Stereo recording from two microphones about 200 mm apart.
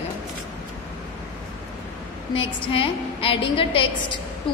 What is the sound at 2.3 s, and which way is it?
A woman's voice, 25° left (ahead or behind).